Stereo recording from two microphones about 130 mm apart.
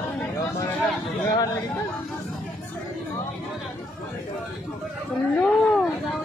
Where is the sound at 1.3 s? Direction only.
30° left (ahead or behind).